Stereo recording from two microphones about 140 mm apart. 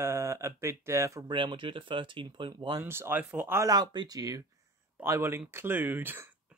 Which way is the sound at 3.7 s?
30° right (ahead or behind).